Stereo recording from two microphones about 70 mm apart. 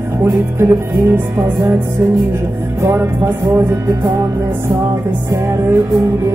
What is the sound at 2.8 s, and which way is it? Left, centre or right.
Music, right.